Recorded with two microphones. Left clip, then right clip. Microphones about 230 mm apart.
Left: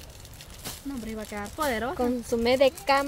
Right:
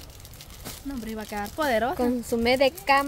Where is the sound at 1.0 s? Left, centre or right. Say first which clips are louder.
Right 5 dB; right.